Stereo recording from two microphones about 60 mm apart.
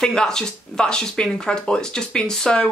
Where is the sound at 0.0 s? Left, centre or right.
Centre.